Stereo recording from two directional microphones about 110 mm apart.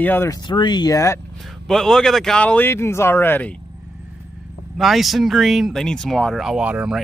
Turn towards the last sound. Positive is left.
turn(degrees=-10)  # may be behind; listen again after turning